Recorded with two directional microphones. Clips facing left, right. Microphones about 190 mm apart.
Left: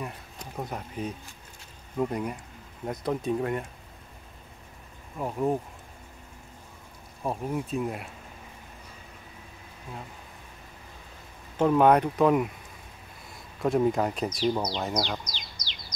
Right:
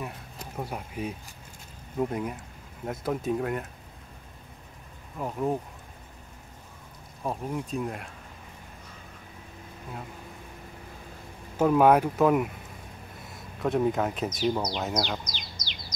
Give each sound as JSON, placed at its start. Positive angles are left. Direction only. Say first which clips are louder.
{"t": 0.0, "sound": "a sound", "louder": "even", "side_deg": -5}
{"t": 2.0, "sound": "speech", "louder": "even", "side_deg": 0}
{"t": 5.1, "sound": "speech", "louder": "left 1 dB", "side_deg": 5}
{"t": 7.2, "sound": "speech", "louder": "left 1 dB", "side_deg": 5}
{"t": 11.5, "sound": "speech", "louder": "even", "side_deg": -5}